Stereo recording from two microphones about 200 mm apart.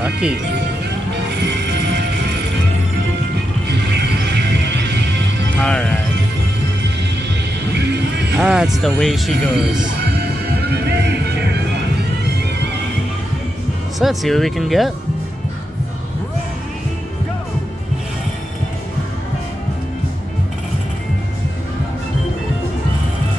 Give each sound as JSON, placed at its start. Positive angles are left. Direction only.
{"t": 0.0, "sound": "speech", "side_deg": -5}
{"t": 1.7, "sound": "music", "side_deg": -60}
{"t": 3.6, "sound": "music", "side_deg": -55}
{"t": 5.6, "sound": "speech", "side_deg": 5}
{"t": 7.7, "sound": "music", "side_deg": -55}
{"t": 8.4, "sound": "speech", "side_deg": -5}
{"t": 10.0, "sound": "music", "side_deg": -55}
{"t": 13.9, "sound": "speech", "side_deg": 0}